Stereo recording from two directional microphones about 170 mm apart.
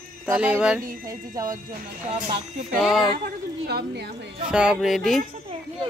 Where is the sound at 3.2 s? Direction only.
70° right (ahead or behind).